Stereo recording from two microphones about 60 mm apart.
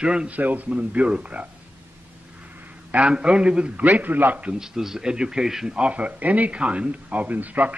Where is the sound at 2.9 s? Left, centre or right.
Centre.